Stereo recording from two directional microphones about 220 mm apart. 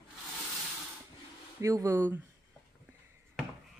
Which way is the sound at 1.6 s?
15° right (ahead or behind).